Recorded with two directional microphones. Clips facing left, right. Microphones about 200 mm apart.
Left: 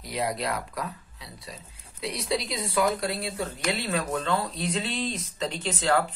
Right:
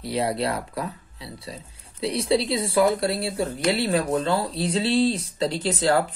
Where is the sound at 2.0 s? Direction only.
30° right (ahead or behind).